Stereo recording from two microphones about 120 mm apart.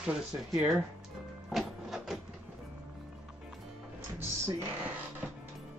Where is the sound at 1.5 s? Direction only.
Centre (ahead or behind).